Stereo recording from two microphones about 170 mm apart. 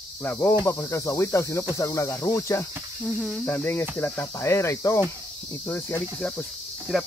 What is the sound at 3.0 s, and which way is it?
Speech, centre (ahead or behind).